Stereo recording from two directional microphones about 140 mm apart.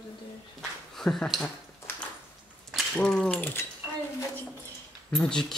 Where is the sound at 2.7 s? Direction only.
5° left (ahead or behind).